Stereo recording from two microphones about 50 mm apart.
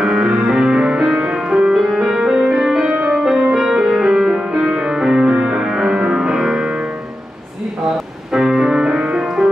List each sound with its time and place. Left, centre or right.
0.0 s music: centre
8.3 s music: centre